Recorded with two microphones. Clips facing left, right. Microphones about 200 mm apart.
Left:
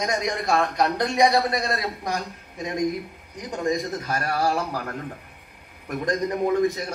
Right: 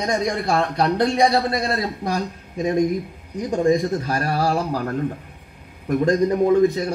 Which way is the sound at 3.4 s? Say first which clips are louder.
Right 7 dB; 30° right (ahead or behind).